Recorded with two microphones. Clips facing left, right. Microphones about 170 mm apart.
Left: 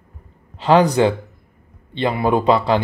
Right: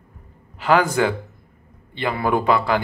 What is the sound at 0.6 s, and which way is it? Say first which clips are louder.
Speech: left 4 dB; 20° left (ahead or behind).